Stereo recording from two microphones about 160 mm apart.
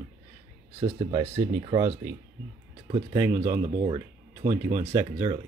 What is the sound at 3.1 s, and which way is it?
Speech, 20° right (ahead or behind).